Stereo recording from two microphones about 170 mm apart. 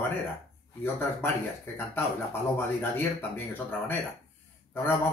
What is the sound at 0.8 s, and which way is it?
Speech, 15° left (ahead or behind).